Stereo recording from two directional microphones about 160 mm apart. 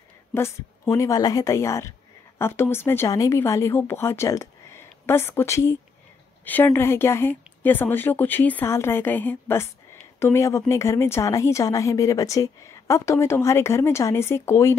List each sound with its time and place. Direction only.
0.3 s a woman's voice: 15° left (ahead or behind)